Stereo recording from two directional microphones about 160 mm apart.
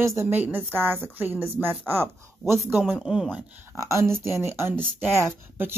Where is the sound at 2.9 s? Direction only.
Centre (ahead or behind).